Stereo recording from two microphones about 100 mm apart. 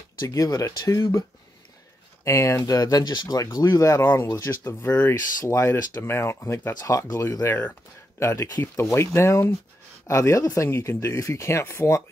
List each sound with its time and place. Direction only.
0.2 s speech: 40° left (ahead or behind)
2.2 s speech: 30° left (ahead or behind)